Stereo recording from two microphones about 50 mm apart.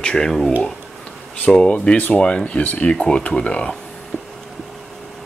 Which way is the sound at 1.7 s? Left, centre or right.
Left.